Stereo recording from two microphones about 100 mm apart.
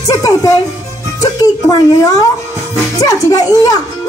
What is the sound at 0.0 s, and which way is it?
A child's voice, 35° left (ahead or behind).